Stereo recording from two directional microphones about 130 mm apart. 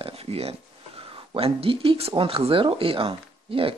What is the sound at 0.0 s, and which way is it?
Speech, 50° right (ahead or behind).